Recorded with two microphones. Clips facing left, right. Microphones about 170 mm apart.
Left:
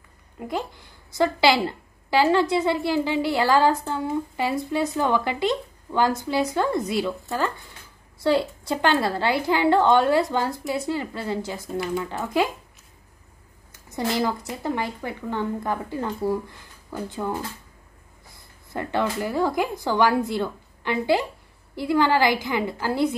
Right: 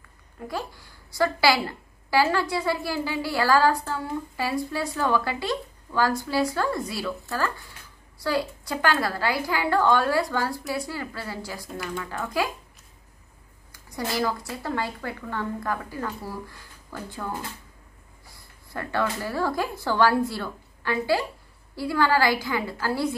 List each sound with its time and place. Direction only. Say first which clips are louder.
0.4 s a woman's voice: left 3 dB; 20° left (ahead or behind)
11.7 s speech: left 7 dB; centre (ahead or behind)
12.0 s a woman's voice: left 2 dB; 20° left (ahead or behind)
13.7 s a woman's voice: left 4 dB; 25° left (ahead or behind)
18.7 s a woman's voice: left 2 dB; 20° left (ahead or behind)